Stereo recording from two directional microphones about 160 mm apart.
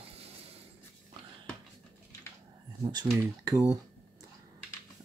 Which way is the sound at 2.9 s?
25° right (ahead or behind).